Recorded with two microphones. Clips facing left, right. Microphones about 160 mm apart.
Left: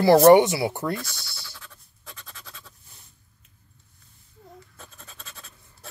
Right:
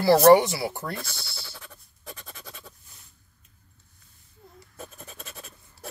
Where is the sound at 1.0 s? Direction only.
30° right (ahead or behind).